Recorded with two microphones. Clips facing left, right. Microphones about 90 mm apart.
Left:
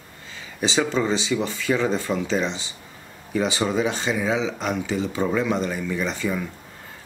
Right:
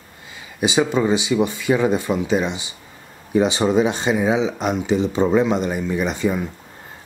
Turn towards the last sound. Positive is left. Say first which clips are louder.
# right 5 dB
turn(degrees=-20)  # may be behind; listen again after turning